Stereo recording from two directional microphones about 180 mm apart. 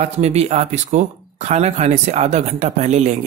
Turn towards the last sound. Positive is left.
turn(degrees=-40)  # may be behind; listen again after turning